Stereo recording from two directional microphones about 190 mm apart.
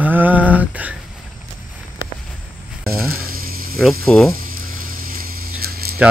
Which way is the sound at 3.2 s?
50° right (ahead or behind).